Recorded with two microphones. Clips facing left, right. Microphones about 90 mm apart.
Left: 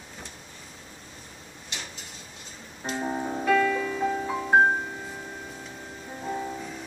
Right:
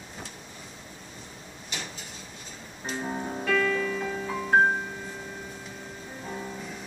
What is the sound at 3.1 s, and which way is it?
Piano, 15° left (ahead or behind).